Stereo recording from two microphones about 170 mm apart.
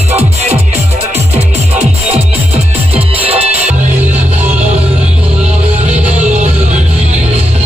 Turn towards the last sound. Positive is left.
turn(degrees=-10)  # may be behind; listen again after turning